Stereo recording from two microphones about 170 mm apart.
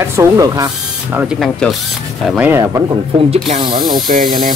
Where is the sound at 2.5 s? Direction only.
20° right (ahead or behind).